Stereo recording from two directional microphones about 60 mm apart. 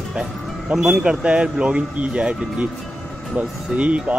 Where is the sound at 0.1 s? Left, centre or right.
Centre.